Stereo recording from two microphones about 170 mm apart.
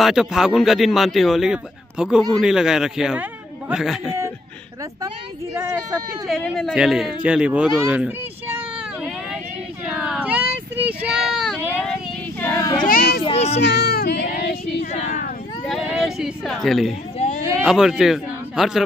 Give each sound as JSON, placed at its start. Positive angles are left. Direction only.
{"t": 0.0, "sound": "a man's voice", "side_deg": -5}
{"t": 6.2, "sound": "a man's voice", "side_deg": 0}
{"t": 8.7, "sound": "vehicle", "side_deg": -5}
{"t": 9.8, "sound": "a sound", "side_deg": -5}
{"t": 11.1, "sound": "child singing", "side_deg": 0}
{"t": 12.8, "sound": "a child's voice", "side_deg": 60}
{"t": 13.2, "sound": "a child's voice", "side_deg": 40}
{"t": 13.6, "sound": "child singing", "side_deg": 70}
{"t": 14.9, "sound": "a sound", "side_deg": 45}
{"t": 15.8, "sound": "a man's voice", "side_deg": -5}
{"t": 17.2, "sound": "a sound", "side_deg": 40}
{"t": 17.6, "sound": "a man's voice", "side_deg": -5}